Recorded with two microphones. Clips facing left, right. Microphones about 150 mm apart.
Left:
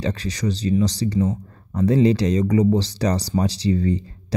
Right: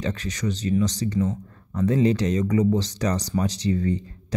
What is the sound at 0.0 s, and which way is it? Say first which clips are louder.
Speech: left 3 dB; 35° left (ahead or behind).